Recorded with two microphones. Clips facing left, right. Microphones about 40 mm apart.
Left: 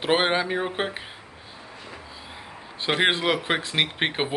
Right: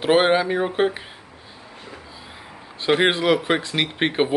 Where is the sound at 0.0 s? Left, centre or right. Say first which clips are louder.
Right 5 dB; centre.